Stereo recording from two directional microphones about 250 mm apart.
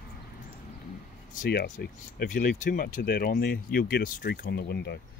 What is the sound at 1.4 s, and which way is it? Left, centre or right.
Speech, left.